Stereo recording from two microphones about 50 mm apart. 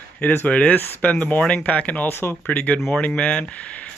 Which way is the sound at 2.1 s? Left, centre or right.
Left.